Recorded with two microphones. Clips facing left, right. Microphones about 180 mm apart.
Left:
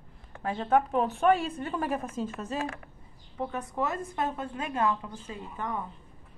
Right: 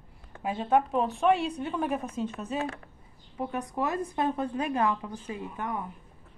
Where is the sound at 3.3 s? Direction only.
15° right (ahead or behind).